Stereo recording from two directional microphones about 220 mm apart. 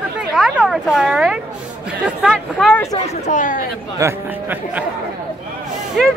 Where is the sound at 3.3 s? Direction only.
35° left (ahead or behind).